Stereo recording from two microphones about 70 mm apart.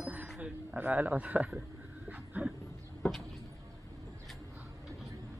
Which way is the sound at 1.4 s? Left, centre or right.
Centre.